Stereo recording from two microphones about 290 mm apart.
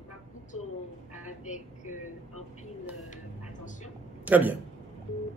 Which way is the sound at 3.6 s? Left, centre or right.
Left.